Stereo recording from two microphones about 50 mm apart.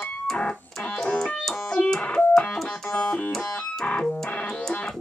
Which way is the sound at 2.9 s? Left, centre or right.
Left.